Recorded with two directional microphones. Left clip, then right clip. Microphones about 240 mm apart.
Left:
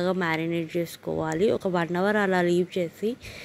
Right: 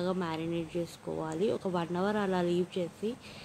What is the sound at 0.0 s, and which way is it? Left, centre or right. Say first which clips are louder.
Speech: left 8 dB; left.